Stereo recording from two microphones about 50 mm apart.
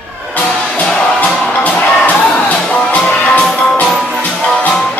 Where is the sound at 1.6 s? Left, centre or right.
Left.